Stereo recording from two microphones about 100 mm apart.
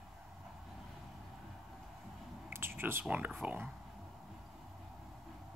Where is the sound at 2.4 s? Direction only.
25° right (ahead or behind).